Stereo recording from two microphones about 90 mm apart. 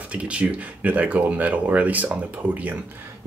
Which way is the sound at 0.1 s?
15° right (ahead or behind).